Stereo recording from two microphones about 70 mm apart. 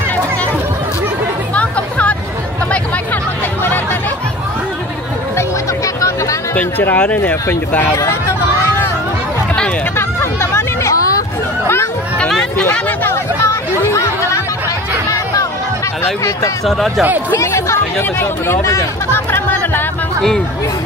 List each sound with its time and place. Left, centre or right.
1.5 s music: centre
5.9 s music: left
6.5 s speech: left
9.9 s hubbub: left
11.6 s chatter: left
12.3 s hubbub: centre
13.0 s chatter: left
16.6 s speech: centre
17.4 s chatter: left
18.2 s speech: left
19.3 s chatter: left
20.2 s speech: centre